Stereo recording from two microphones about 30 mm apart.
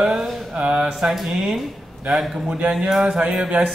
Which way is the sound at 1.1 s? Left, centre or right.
Centre.